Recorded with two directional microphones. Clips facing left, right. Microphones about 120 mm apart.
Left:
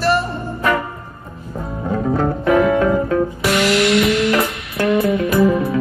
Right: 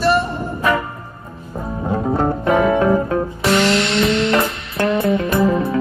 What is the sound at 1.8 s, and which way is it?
Music, 25° right (ahead or behind).